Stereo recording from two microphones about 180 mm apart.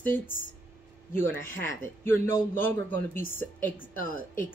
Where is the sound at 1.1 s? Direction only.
10° left (ahead or behind).